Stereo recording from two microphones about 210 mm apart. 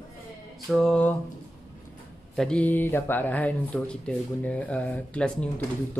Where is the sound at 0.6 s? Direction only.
Centre (ahead or behind).